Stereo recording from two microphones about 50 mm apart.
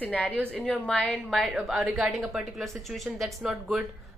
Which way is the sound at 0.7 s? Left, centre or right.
Centre.